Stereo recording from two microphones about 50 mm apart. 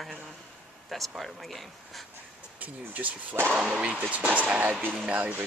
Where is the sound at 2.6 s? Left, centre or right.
Right.